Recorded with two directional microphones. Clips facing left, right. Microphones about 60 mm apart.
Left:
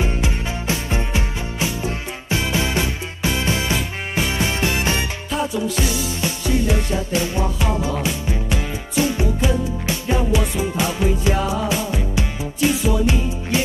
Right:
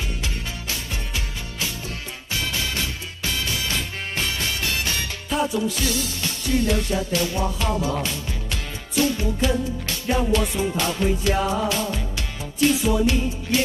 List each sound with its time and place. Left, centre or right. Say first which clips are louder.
0.0 s music: left 7 dB; left